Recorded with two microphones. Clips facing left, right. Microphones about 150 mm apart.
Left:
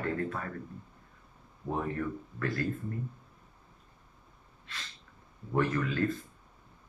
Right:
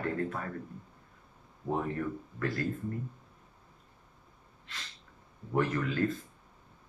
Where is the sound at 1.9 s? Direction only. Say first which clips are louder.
Even; 25° right (ahead or behind).